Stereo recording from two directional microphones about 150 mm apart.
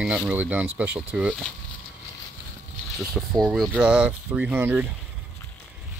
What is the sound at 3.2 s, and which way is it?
Speech, centre (ahead or behind).